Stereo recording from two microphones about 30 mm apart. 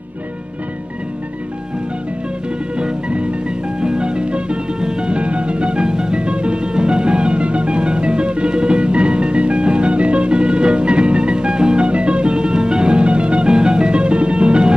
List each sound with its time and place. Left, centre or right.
2.7 s music: right
3.8 s music: right